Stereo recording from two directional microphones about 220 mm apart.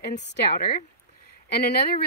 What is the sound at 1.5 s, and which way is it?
Speech, 45° left (ahead or behind).